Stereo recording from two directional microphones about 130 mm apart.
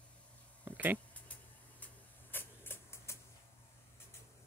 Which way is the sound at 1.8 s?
15° left (ahead or behind).